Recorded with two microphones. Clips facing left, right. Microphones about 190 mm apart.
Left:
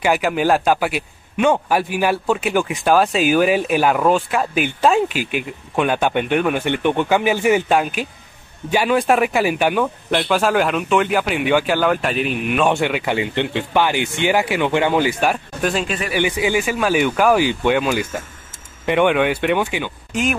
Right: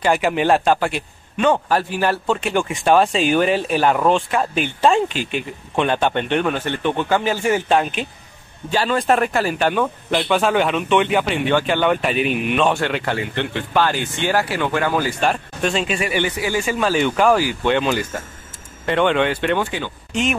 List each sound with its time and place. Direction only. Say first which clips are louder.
0.0 s a man's voice: even; centre (ahead or behind)
12.6 s a man's voice: left 1 dB; 15° left (ahead or behind)
15.1 s speech: left 1 dB; 5° left (ahead or behind)
16.2 s a man's voice: left 6 dB; 15° left (ahead or behind)
16.6 s a man's voice: left 1 dB; 5° left (ahead or behind)
20.1 s speech: even; centre (ahead or behind)